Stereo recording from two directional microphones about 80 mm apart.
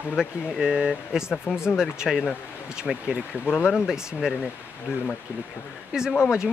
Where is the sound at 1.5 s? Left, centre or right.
Left.